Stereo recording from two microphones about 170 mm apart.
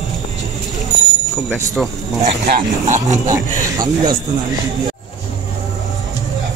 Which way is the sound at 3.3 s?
20° right (ahead or behind).